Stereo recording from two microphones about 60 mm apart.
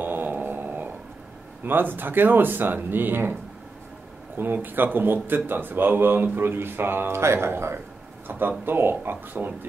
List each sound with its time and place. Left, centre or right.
0.0 s a sound: right
1.7 s a man's voice: right
4.4 s a man's voice: right